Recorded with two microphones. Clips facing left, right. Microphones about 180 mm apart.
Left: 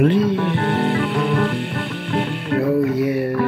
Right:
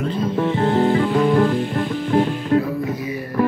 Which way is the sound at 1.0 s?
70° left (ahead or behind).